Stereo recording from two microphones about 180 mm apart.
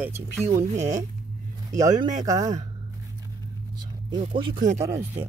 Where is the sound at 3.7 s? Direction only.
25° right (ahead or behind).